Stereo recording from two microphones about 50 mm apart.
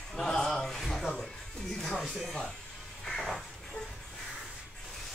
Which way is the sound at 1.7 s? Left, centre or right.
Centre.